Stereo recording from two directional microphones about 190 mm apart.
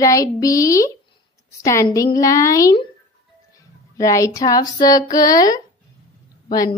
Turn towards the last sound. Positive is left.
turn(degrees=20)  # may be behind; listen again after turning